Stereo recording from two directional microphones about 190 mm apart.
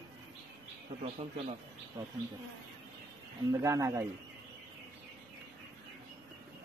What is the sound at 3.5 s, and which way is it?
Speech, 15° right (ahead or behind).